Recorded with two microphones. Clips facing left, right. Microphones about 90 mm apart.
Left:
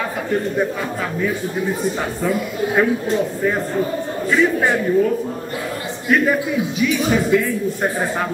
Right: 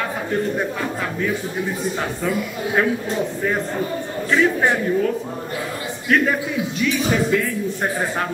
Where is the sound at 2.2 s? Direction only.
5° left (ahead or behind).